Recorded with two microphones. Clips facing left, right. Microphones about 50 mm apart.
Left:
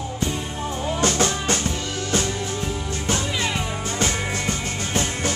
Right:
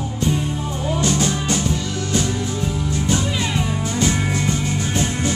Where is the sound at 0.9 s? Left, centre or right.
Left.